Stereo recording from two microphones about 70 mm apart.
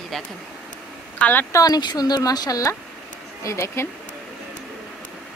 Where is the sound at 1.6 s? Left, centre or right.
Left.